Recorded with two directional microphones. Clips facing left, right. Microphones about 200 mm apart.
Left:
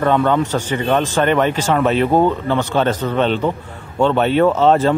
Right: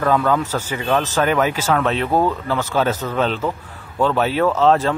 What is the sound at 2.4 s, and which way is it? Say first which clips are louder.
Speech: left 3 dB; 5° right (ahead or behind).